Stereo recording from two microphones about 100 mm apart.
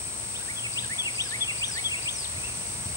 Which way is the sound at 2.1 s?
25° right (ahead or behind).